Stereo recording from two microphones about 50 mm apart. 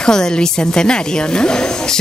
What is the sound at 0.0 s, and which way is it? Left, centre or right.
Speech, centre.